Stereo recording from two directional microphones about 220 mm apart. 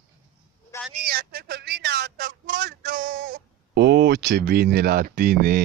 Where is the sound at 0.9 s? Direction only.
45° right (ahead or behind).